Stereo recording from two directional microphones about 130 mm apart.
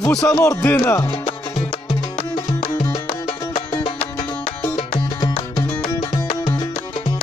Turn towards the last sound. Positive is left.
turn(degrees=35)  # may be behind; listen again after turning